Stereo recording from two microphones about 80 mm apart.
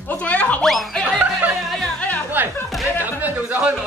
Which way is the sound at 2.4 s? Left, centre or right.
Right.